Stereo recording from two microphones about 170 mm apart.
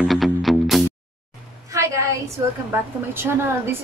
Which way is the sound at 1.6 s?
15° right (ahead or behind).